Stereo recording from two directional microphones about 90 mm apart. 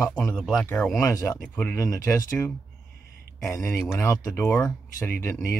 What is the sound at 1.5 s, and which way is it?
Speech, 20° left (ahead or behind).